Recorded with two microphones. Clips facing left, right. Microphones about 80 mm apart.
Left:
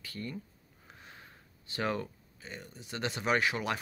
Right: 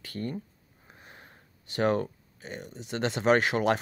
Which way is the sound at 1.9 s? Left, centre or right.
Right.